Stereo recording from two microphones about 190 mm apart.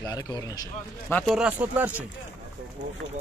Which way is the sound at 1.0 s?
5° left (ahead or behind).